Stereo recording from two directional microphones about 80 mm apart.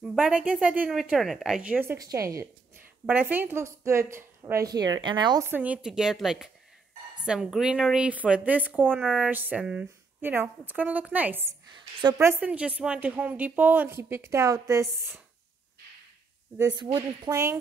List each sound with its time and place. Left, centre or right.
0.0 s speech: centre
1.1 s speech: centre
2.0 s a woman's voice: right
3.1 s a woman's voice: right
4.7 s speech: right
5.4 s speech: right
10.2 s a woman's voice: right
11.7 s speech: right
12.4 s a woman's voice: centre; by 15.1 s right
16.7 s speech: right
17.3 s a woman's voice: right